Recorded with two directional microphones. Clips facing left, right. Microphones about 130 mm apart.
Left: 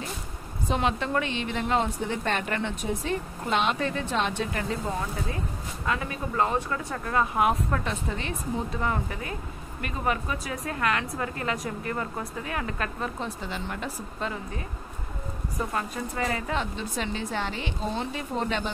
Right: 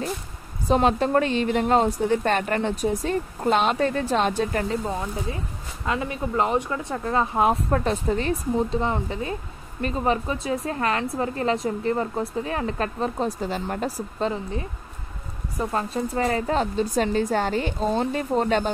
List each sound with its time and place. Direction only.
0.7 s a woman's voice: 40° right (ahead or behind)
5.9 s speech: 25° right (ahead or behind)
8.8 s a woman's voice: 25° right (ahead or behind)
15.7 s speech: 30° right (ahead or behind)